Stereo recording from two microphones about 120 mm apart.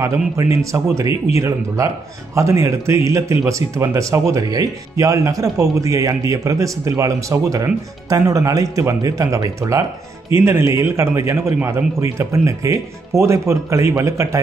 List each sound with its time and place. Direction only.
0.4 s speech: 25° right (ahead or behind)